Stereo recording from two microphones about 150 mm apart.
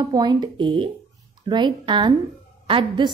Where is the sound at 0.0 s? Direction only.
30° right (ahead or behind).